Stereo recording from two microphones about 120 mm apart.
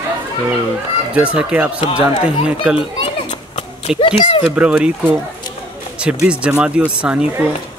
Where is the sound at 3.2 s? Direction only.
60° left (ahead or behind).